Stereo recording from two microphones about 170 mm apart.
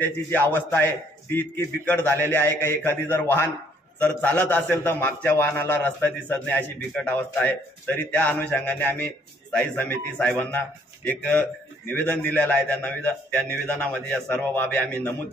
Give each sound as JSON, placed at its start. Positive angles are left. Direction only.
{"t": 0.0, "sound": "a man's voice", "side_deg": 10}